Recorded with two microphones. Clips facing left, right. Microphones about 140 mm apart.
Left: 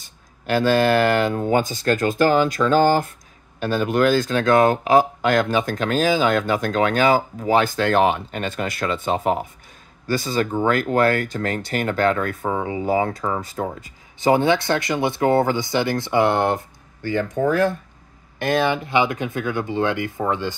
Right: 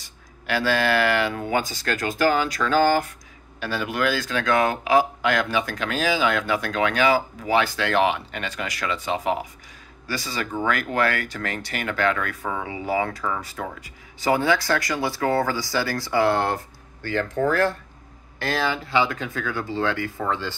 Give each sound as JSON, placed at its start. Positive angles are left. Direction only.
{"t": 0.5, "sound": "speech", "side_deg": 45}
{"t": 1.6, "sound": "speech", "side_deg": 50}
{"t": 2.6, "sound": "speech", "side_deg": 35}
{"t": 10.5, "sound": "speech", "side_deg": 25}
{"t": 10.8, "sound": "speech", "side_deg": 40}